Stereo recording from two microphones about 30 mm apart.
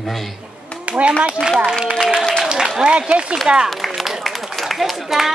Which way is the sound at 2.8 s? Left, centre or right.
Right.